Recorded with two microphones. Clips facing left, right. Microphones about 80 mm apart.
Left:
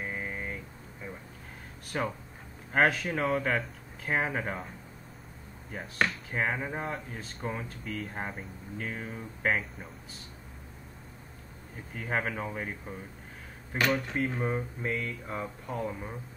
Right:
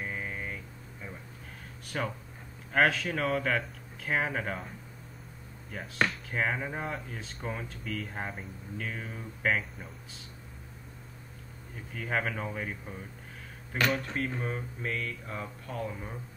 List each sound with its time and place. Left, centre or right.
0.0 s vehicle: centre
1.9 s speech: centre
2.7 s speech: centre
5.9 s speech: centre
11.9 s speech: centre
14.1 s speech: centre